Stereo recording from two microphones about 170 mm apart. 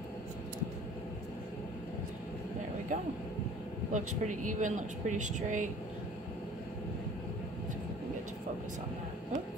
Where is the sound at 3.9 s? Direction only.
45° right (ahead or behind).